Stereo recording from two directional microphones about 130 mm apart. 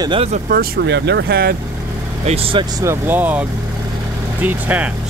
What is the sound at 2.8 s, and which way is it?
Speech, 20° right (ahead or behind).